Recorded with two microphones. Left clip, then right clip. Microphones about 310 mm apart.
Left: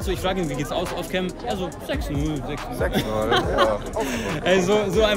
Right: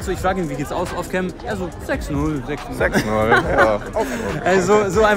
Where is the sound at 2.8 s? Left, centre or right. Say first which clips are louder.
Right 6 dB; right.